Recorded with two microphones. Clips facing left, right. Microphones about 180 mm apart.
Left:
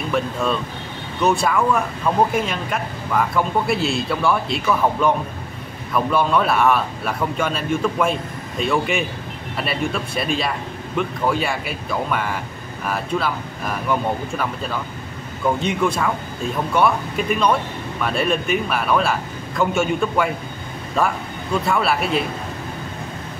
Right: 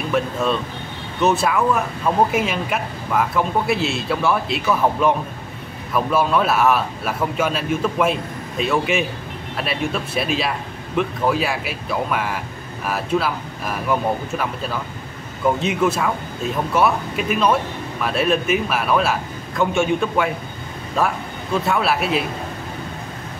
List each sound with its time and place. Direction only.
0.1 s a man's voice: centre (ahead or behind)